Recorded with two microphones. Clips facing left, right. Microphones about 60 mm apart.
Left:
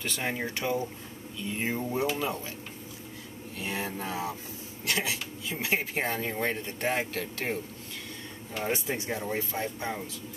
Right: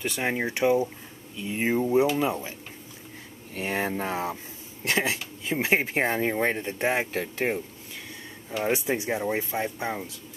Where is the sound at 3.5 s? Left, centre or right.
Right.